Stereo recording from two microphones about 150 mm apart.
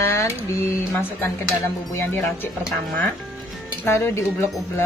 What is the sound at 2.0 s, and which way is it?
Speech, 15° left (ahead or behind).